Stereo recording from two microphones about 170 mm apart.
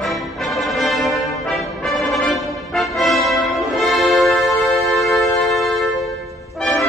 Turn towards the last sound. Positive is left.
turn(degrees=0)  # may be behind; listen again after turning